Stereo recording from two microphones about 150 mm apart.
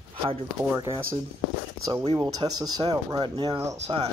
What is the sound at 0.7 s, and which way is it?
Speech, 20° right (ahead or behind).